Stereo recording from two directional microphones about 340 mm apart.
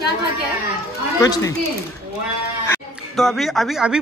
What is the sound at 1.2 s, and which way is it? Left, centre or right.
Speech, centre.